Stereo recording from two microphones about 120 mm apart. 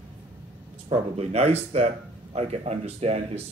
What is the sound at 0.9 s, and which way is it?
Speech, 60° right (ahead or behind).